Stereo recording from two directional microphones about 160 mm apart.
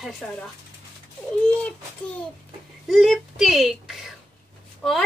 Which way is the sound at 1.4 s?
5° left (ahead or behind).